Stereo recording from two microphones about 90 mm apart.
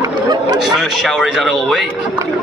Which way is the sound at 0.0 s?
50° right (ahead or behind).